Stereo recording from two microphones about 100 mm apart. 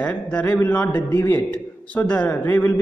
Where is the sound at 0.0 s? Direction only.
15° left (ahead or behind).